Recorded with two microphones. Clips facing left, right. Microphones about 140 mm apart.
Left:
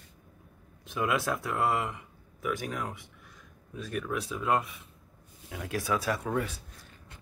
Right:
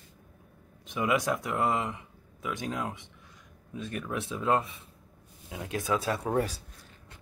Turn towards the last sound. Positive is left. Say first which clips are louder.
# right 3 dB
turn(degrees=-35)  # may be behind; listen again after turning